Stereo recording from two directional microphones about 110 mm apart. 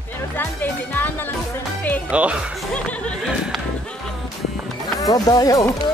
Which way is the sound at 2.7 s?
10° left (ahead or behind).